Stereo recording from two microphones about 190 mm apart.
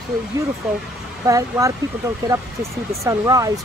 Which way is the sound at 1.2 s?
15° right (ahead or behind).